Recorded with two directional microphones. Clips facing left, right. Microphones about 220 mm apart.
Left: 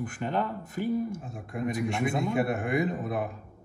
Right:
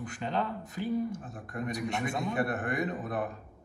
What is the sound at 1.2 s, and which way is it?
Speech, 10° left (ahead or behind).